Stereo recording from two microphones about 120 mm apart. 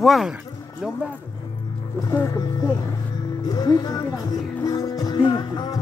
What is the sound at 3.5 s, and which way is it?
Speech, 35° left (ahead or behind).